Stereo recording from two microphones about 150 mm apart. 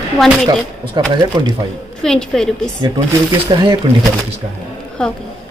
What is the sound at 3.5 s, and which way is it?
Speech, 30° right (ahead or behind).